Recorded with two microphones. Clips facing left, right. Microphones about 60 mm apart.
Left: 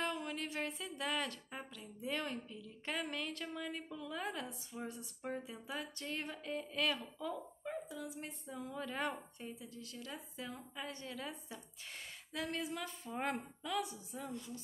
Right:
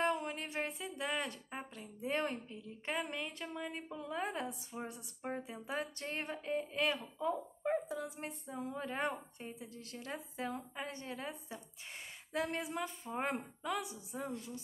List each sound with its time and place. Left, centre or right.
0.0 s music: right
2.0 s speech: right
4.5 s speech: centre
5.8 s speech: right
7.6 s speech: right
8.1 s a woman's voice: right
10.9 s speech: right
14.1 s a woman's voice: right